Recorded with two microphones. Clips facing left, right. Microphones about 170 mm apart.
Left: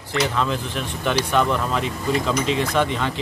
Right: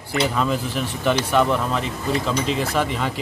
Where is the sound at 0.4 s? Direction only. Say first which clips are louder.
Right 2 dB; 5° right (ahead or behind).